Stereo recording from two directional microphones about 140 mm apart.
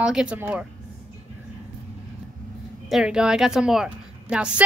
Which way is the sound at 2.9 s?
5° right (ahead or behind).